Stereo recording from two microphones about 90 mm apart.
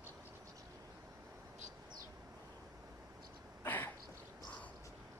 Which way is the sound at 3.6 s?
25° left (ahead or behind).